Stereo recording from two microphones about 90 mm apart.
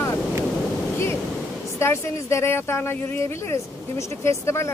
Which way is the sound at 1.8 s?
30° left (ahead or behind).